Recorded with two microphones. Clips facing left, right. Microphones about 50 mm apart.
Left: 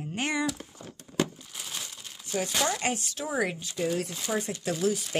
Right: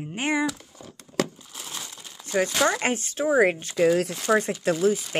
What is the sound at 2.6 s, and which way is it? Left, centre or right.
Speech, right.